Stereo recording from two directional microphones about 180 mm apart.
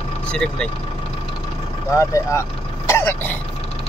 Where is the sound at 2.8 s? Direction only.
15° left (ahead or behind).